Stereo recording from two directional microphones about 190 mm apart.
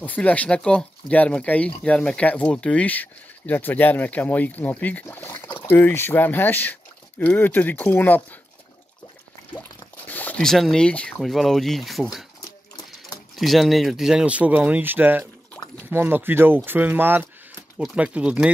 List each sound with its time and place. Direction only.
0.0 s speech: 10° left (ahead or behind)
10.0 s speech: 10° left (ahead or behind)
13.4 s speech: centre (ahead or behind)
15.6 s a sound: 15° left (ahead or behind)
15.9 s speech: 10° right (ahead or behind)